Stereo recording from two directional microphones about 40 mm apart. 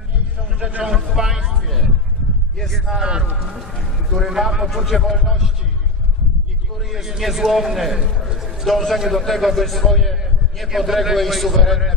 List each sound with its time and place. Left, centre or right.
0.6 s a man's voice: right
0.8 s a man's voice: centre
3.0 s a man's voice: centre
4.1 s a man's voice: centre
6.8 s a man's voice: centre